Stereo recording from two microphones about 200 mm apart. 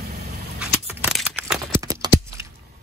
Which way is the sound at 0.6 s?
5° right (ahead or behind).